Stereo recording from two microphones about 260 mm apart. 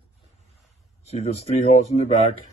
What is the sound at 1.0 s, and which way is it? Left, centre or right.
Speech, left.